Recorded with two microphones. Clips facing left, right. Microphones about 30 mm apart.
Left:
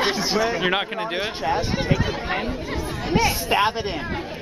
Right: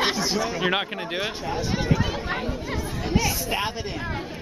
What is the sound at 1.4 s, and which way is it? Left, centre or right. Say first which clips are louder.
Speech: left 4 dB; left.